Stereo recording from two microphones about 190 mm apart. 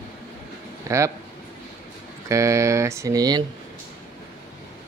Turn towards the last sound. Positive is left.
turn(degrees=-20)  # may be behind; listen again after turning